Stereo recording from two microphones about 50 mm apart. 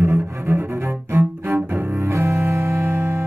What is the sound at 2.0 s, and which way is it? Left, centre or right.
Music, right.